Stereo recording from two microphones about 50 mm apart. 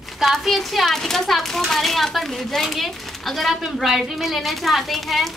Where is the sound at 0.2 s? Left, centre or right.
Centre.